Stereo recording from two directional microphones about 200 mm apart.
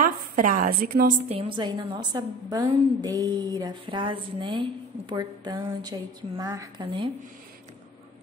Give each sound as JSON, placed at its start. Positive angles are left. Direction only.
{"t": 0.0, "sound": "a woman's voice", "side_deg": -40}
{"t": 1.3, "sound": "a woman's voice", "side_deg": -25}